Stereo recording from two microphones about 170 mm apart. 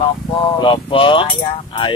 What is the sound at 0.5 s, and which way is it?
Speech, 30° left (ahead or behind).